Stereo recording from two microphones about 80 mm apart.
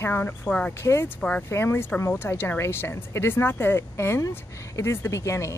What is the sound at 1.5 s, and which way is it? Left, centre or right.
Speech, left.